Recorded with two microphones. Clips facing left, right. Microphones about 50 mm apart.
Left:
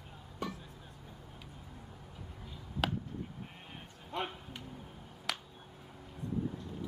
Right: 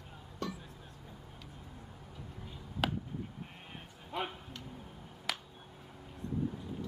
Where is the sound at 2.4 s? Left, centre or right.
Centre.